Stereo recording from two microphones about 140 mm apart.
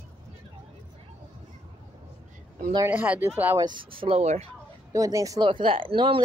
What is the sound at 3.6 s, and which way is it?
Speech, 35° right (ahead or behind).